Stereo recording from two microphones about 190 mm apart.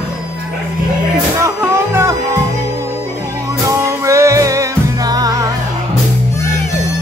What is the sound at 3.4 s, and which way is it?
Music, 15° right (ahead or behind).